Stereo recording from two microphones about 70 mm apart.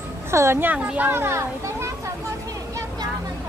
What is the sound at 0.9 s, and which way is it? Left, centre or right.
Speech, right.